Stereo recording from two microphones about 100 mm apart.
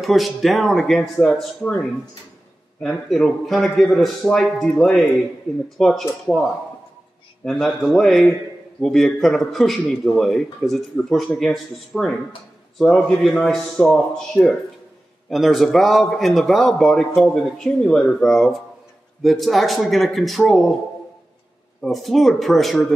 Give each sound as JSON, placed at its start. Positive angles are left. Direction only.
{"t": 0.0, "sound": "a man's voice", "side_deg": 0}
{"t": 6.3, "sound": "speech", "side_deg": 25}
{"t": 7.4, "sound": "a man's voice", "side_deg": 5}
{"t": 21.8, "sound": "a man's voice", "side_deg": 0}